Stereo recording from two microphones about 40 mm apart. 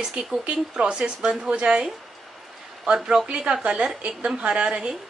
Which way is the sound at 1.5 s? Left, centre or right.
Right.